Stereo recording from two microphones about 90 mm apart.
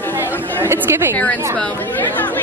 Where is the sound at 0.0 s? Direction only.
20° left (ahead or behind).